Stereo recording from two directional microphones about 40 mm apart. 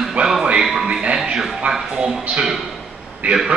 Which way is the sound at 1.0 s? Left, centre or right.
Centre.